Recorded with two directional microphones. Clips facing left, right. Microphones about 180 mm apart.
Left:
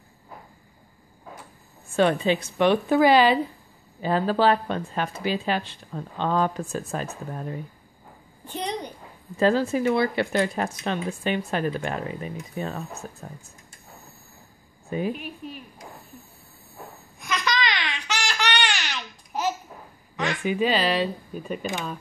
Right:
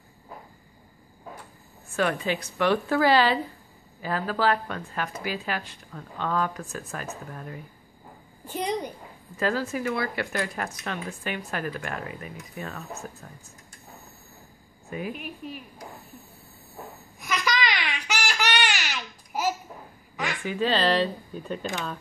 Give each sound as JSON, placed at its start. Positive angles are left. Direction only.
{"t": 2.0, "sound": "speech", "side_deg": 25}
{"t": 8.5, "sound": "a sound", "side_deg": -5}
{"t": 9.4, "sound": "speech", "side_deg": 25}
{"t": 14.9, "sound": "a woman's voice", "side_deg": 25}
{"t": 15.1, "sound": "speech", "side_deg": 0}
{"t": 17.2, "sound": "a sound", "side_deg": -5}
{"t": 20.4, "sound": "speech", "side_deg": 15}